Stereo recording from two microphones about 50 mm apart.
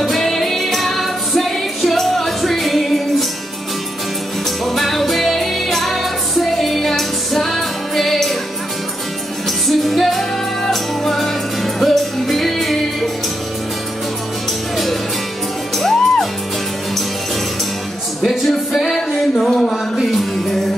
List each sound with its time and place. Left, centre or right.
0.0 s music: centre
4.6 s music: centre
9.7 s music: centre
15.8 s music: centre
18.4 s music: centre